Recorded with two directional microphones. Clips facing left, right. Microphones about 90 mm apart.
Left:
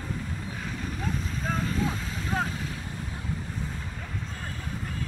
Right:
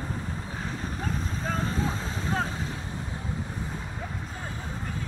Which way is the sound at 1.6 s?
30° right (ahead or behind).